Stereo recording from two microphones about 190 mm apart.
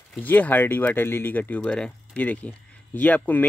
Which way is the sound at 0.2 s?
10° left (ahead or behind).